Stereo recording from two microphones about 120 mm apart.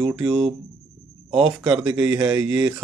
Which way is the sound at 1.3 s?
55° right (ahead or behind).